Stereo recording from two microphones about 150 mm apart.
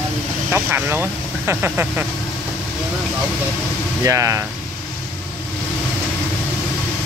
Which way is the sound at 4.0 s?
20° right (ahead or behind).